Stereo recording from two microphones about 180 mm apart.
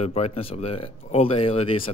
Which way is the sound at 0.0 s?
35° left (ahead or behind).